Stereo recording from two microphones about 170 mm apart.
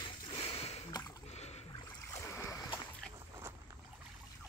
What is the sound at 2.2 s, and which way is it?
Splash, 15° left (ahead or behind).